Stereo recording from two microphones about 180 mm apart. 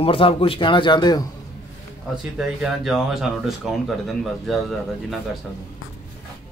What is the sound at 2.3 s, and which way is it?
Speech, centre (ahead or behind).